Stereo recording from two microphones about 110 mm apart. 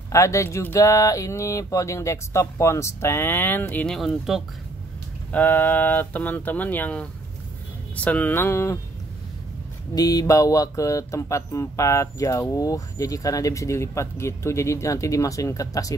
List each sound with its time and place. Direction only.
0.1 s speech: 25° left (ahead or behind)
3.9 s speech: centre (ahead or behind)
5.3 s speech: 15° left (ahead or behind)
9.9 s speech: 35° left (ahead or behind)